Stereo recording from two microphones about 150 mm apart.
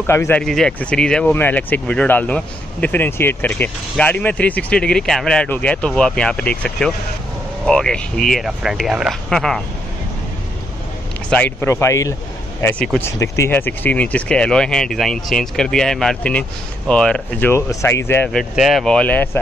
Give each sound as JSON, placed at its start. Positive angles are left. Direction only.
{"t": 0.0, "sound": "speech", "side_deg": 15}
{"t": 0.4, "sound": "speech", "side_deg": 5}
{"t": 11.2, "sound": "speech", "side_deg": 10}
{"t": 12.6, "sound": "speech", "side_deg": 5}
{"t": 13.0, "sound": "speech", "side_deg": 15}
{"t": 18.4, "sound": "speech", "side_deg": 0}